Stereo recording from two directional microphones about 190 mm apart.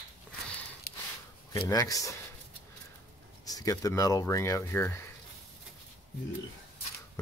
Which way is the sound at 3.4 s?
20° left (ahead or behind).